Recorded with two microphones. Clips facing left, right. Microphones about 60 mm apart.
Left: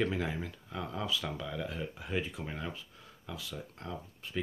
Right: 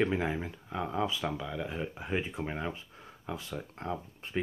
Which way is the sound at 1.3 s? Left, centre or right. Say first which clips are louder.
Right 2 dB; centre.